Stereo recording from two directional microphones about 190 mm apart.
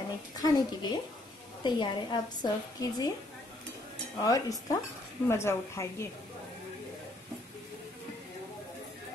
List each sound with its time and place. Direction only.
0.4 s a woman's voice: 20° left (ahead or behind)
4.2 s a woman's voice: 20° left (ahead or behind)